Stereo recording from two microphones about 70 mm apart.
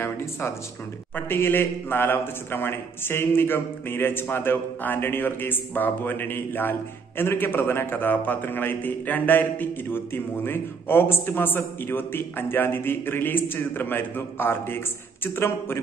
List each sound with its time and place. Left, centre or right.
0.0 s a man's voice: left